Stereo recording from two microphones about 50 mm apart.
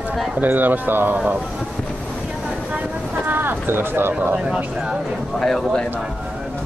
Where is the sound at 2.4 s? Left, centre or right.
Centre.